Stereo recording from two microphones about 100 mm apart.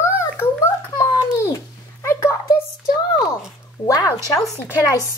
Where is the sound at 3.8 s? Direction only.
35° left (ahead or behind).